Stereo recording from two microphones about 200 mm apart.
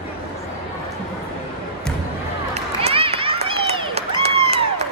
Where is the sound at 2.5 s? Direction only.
30° right (ahead or behind).